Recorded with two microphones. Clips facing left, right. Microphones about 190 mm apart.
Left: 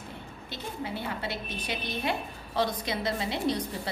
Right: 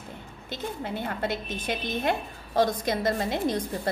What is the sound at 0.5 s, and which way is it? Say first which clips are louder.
A woman's voice: right 3 dB; 50° right (ahead or behind).